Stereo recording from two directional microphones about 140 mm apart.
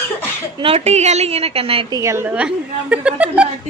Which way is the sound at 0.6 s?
45° right (ahead or behind).